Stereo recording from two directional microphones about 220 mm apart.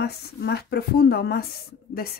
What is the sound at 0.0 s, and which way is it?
A woman's voice, 50° left (ahead or behind).